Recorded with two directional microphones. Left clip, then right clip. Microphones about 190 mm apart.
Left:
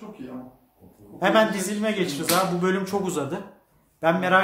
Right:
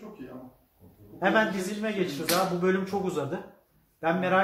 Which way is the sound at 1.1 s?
15° left (ahead or behind).